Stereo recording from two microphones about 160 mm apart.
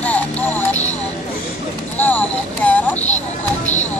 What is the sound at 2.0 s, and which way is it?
Speech, 10° left (ahead or behind).